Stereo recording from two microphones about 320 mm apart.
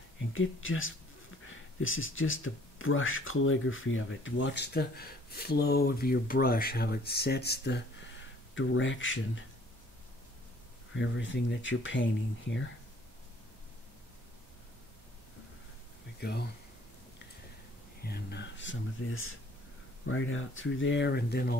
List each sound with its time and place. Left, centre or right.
0.3 s speech: left
11.0 s speech: left
16.2 s speech: left
18.0 s speech: left